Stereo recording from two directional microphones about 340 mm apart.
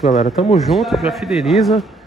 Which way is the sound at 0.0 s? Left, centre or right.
Centre.